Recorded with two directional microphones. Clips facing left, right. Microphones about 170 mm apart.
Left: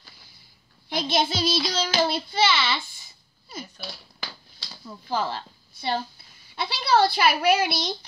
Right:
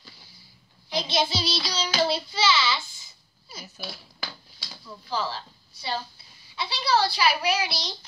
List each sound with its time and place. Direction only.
0.8 s child singing: 55° left (ahead or behind)
3.6 s speech: 5° right (ahead or behind)
5.1 s a woman's voice: 55° left (ahead or behind)